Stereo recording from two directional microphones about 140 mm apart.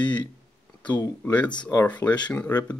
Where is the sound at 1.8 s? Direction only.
10° left (ahead or behind).